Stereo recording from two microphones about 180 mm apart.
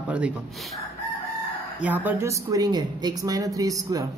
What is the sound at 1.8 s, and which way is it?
A woman's voice, 10° right (ahead or behind).